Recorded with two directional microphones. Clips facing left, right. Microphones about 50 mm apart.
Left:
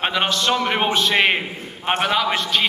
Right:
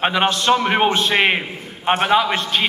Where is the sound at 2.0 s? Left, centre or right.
Right.